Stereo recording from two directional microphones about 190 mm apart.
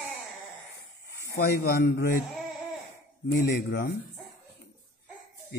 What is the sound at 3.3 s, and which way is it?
Speech, 65° left (ahead or behind).